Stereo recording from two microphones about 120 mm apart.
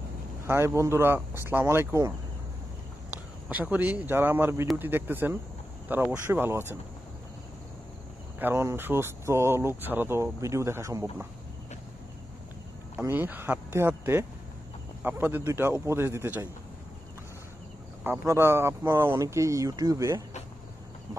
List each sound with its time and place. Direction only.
0.5 s speech: 20° right (ahead or behind)
3.4 s speech: 15° right (ahead or behind)
8.4 s speech: 20° right (ahead or behind)
13.1 s speech: 15° right (ahead or behind)
18.0 s speech: 20° right (ahead or behind)